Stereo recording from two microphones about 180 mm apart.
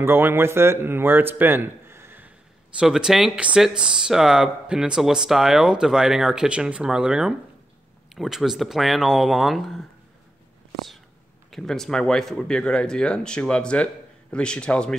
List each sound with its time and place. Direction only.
0.0 s speech: 10° right (ahead or behind)
11.5 s speech: centre (ahead or behind)